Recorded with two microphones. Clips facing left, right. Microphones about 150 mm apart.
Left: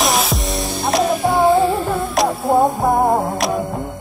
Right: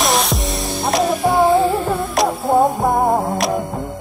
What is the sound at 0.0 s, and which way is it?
Music, centre (ahead or behind).